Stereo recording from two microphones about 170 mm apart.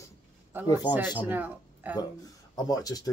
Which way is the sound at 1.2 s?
10° right (ahead or behind).